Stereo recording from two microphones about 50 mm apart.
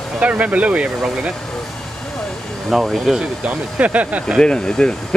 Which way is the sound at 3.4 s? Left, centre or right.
Right.